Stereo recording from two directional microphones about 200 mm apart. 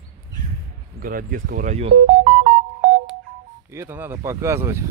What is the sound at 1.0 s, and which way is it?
Speech, 45° right (ahead or behind).